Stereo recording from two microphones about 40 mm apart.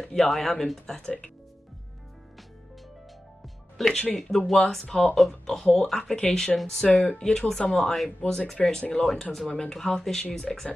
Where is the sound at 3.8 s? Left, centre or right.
Centre.